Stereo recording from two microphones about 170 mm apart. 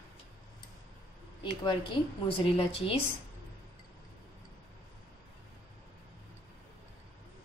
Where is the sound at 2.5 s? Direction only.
35° left (ahead or behind).